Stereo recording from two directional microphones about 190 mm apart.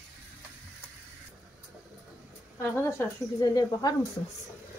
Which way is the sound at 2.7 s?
15° left (ahead or behind).